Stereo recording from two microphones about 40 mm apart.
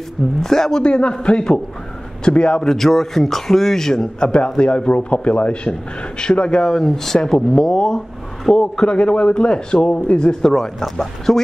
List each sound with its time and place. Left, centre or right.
0.4 s a man's voice: centre
2.6 s a man's voice: centre; by 10.5 s left
10.5 s speech: centre